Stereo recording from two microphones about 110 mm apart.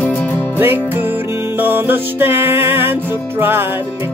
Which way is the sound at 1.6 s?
20° right (ahead or behind).